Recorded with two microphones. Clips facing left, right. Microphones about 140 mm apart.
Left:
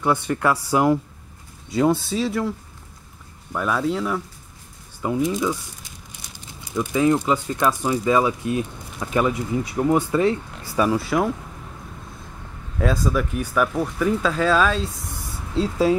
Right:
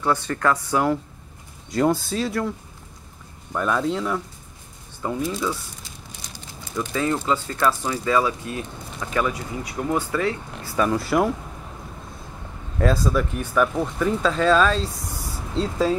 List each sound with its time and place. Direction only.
0.0 s speech: 15° left (ahead or behind)
1.7 s speech: centre (ahead or behind)
3.5 s speech: 5° left (ahead or behind)
5.0 s speech: 15° left (ahead or behind)
10.8 s speech: 5° left (ahead or behind)
12.7 s speech: centre (ahead or behind)